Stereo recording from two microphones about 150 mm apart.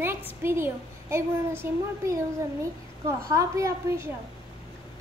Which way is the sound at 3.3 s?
20° right (ahead or behind).